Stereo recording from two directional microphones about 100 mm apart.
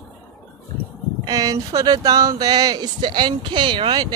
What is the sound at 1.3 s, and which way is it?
Speech, 40° right (ahead or behind).